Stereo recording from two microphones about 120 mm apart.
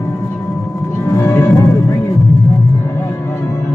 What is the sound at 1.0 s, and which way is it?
Music, 25° left (ahead or behind).